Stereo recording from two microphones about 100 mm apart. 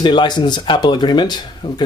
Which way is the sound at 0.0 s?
50° left (ahead or behind).